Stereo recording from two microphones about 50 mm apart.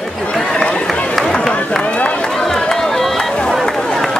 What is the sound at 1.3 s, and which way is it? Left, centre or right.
Run, centre.